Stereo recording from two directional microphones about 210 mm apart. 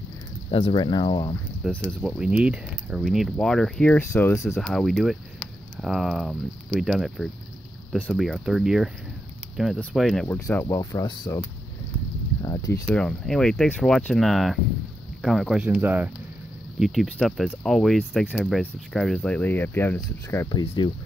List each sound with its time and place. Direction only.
0.5 s speech: 25° left (ahead or behind)
1.9 s speech: centre (ahead or behind)
4.6 s speech: centre (ahead or behind); by 11.4 s 20° left (ahead or behind)
12.4 s a sound: 15° left (ahead or behind)
12.8 s speech: 5° left (ahead or behind); by 20.9 s 25° left (ahead or behind)